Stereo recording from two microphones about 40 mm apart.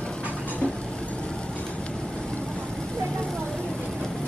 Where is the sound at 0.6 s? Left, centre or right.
Left.